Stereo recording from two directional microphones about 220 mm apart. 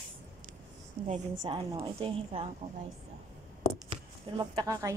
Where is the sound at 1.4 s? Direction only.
20° right (ahead or behind).